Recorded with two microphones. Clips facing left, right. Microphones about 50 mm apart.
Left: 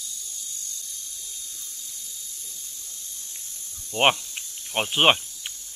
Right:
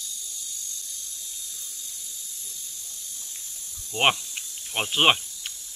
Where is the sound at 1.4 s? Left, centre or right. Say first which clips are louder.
Even; left.